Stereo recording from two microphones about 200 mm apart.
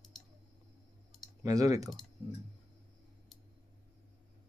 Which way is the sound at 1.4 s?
15° right (ahead or behind).